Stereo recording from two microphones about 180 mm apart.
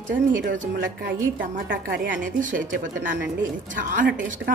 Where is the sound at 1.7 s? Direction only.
50° right (ahead or behind).